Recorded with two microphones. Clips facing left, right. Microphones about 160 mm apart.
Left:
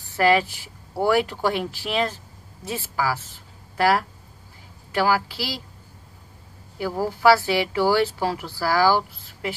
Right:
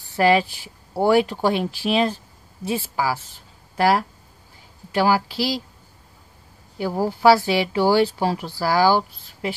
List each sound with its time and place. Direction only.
0.2 s speech: 20° right (ahead or behind)
6.8 s speech: 20° right (ahead or behind)